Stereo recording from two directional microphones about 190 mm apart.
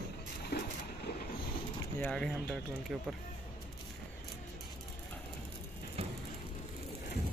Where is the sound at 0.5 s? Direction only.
55° left (ahead or behind).